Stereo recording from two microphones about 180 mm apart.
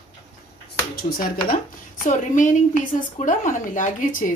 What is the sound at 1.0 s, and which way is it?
Speech, 55° left (ahead or behind).